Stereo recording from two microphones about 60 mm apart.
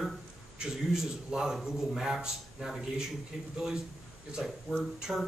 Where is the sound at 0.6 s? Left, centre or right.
Centre.